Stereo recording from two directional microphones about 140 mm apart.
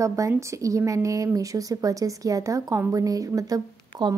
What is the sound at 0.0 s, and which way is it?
A woman's voice, 25° right (ahead or behind).